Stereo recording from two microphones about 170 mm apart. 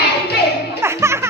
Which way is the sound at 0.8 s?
15° right (ahead or behind).